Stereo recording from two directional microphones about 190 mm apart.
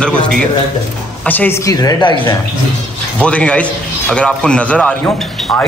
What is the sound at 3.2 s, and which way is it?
A man's voice, 5° left (ahead or behind).